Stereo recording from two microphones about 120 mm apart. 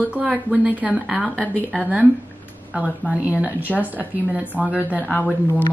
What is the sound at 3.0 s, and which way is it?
Speech, 15° left (ahead or behind).